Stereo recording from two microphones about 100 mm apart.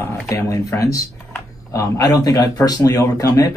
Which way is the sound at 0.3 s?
35° left (ahead or behind).